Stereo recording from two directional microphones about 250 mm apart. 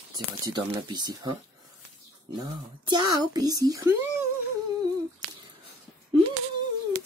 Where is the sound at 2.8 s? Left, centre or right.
Centre.